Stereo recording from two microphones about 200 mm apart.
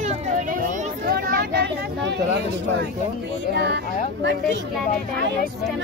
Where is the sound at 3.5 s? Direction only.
55° right (ahead or behind).